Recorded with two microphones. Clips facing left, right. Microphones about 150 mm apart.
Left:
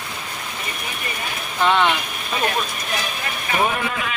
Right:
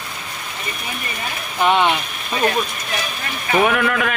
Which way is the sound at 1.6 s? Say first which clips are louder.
Right 2 dB; 15° right (ahead or behind).